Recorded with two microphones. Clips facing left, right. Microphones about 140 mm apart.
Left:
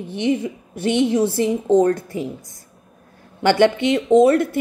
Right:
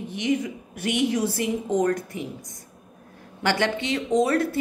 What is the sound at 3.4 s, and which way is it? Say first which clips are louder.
A woman's voice: left 9 dB; 25° left (ahead or behind).